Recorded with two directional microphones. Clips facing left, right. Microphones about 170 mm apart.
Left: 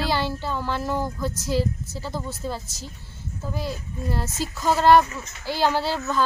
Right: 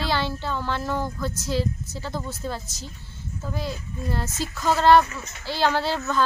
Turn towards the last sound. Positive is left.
turn(degrees=5)  # may be behind; listen again after turning